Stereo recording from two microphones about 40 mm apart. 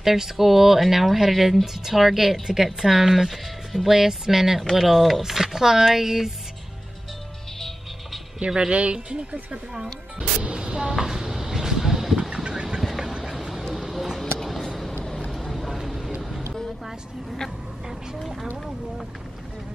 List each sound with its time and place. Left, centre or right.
0.0 s speech: centre
8.5 s speech: right
10.1 s vehicle: right
13.0 s duck: centre
13.7 s a sound: centre
15.3 s a sound: centre
16.2 s vehicle: centre